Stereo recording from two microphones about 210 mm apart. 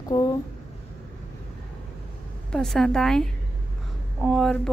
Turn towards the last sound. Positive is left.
turn(degrees=5)  # may be behind; listen again after turning